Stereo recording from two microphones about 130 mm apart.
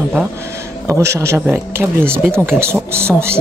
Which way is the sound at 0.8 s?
20° right (ahead or behind).